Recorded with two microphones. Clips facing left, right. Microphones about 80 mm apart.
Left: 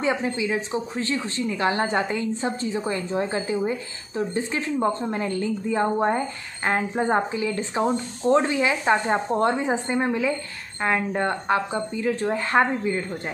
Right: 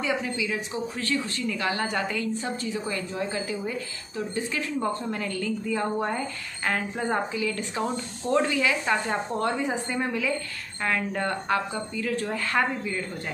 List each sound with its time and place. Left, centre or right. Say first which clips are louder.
0.0 s a woman's voice: left 4 dB; left